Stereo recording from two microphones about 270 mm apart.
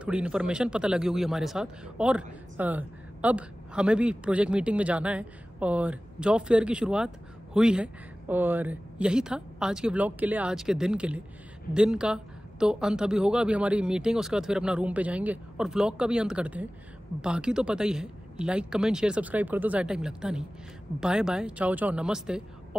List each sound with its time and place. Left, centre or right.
0.0 s speech: centre